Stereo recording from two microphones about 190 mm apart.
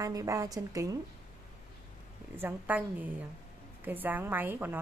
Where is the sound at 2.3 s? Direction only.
10° right (ahead or behind).